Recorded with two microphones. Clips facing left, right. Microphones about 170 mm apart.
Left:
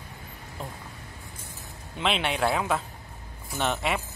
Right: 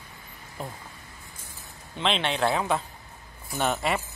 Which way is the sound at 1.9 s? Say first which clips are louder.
Even; 5° left (ahead or behind).